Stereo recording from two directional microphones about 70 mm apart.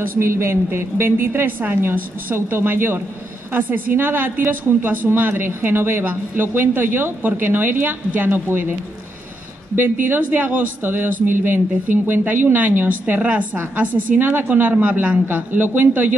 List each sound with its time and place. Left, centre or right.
0.2 s a woman's voice: right
9.8 s a woman's voice: right